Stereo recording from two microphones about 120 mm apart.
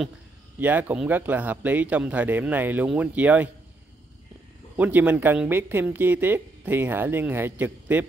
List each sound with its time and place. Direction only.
0.6 s speech: 15° right (ahead or behind)
4.7 s speech: 15° right (ahead or behind)